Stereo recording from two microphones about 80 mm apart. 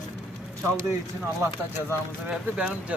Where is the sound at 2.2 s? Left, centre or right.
Centre.